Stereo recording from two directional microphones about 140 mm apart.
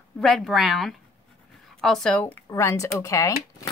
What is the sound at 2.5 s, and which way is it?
Speech, 20° left (ahead or behind).